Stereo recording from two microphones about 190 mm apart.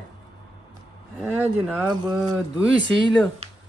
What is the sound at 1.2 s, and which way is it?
Speech, 10° right (ahead or behind).